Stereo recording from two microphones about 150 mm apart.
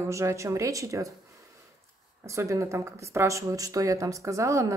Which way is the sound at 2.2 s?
20° right (ahead or behind).